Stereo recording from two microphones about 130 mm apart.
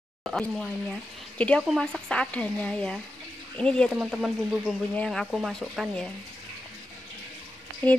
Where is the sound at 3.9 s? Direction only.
5° right (ahead or behind).